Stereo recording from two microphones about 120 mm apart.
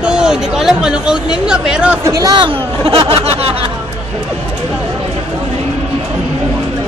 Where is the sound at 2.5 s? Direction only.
50° right (ahead or behind).